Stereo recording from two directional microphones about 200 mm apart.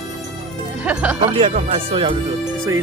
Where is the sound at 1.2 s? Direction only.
25° right (ahead or behind).